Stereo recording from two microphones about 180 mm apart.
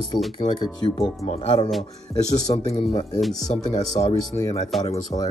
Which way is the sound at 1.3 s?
25° left (ahead or behind).